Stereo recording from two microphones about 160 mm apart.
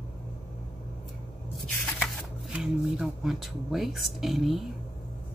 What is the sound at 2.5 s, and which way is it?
Speech, 5° right (ahead or behind).